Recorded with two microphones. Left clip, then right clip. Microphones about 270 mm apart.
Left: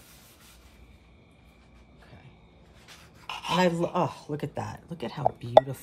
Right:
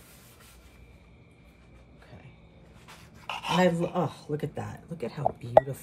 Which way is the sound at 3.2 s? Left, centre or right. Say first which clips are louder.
Even; centre.